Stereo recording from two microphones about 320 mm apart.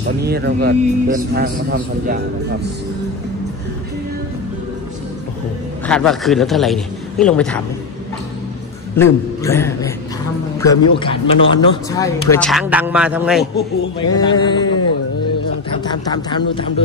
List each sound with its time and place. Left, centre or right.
0.2 s a man's voice: right
5.9 s speech: centre
8.9 s a man's voice: centre
14.1 s a man's voice: centre
15.8 s a man's voice: centre